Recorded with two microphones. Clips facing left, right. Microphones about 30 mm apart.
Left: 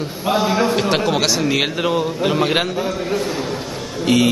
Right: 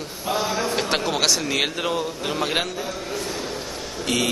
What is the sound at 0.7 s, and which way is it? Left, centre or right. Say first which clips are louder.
A man's voice: left 5 dB; centre.